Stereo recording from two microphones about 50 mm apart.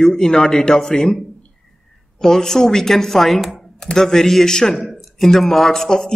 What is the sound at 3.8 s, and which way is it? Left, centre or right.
Speech, centre.